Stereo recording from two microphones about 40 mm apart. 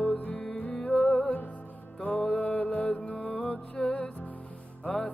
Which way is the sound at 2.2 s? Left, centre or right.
Left.